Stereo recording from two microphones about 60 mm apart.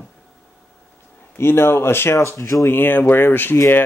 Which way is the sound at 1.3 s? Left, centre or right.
Left.